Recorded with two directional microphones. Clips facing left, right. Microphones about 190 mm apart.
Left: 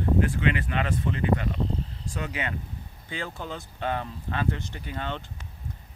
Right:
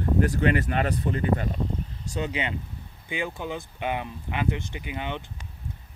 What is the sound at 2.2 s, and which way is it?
Speech, 20° right (ahead or behind).